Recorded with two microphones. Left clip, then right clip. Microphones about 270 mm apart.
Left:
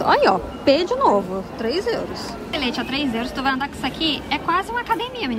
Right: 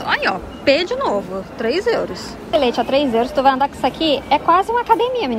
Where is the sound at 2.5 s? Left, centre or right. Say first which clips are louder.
Right 9 dB; left.